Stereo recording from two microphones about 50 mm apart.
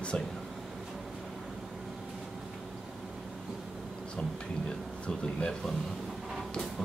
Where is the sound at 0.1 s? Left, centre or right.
Left.